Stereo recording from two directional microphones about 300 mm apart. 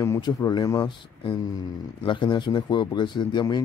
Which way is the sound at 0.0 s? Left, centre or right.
Centre.